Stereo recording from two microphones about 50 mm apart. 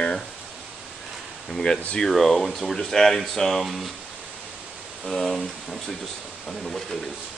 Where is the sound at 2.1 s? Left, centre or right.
Centre.